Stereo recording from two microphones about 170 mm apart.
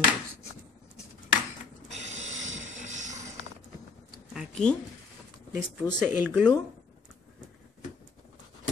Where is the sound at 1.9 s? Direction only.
45° right (ahead or behind).